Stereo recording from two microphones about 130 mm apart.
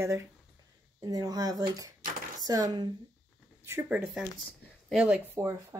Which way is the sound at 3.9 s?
10° right (ahead or behind).